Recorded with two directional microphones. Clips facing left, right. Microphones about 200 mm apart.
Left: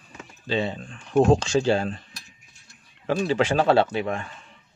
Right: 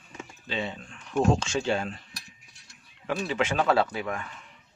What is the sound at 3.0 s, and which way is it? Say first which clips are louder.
A man's voice: left 6 dB; 30° left (ahead or behind).